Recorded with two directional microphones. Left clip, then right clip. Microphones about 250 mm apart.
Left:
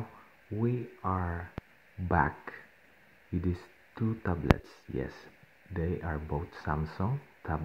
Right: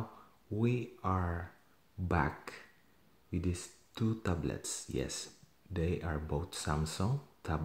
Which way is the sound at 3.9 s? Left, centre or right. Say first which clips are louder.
Left 2 dB; centre.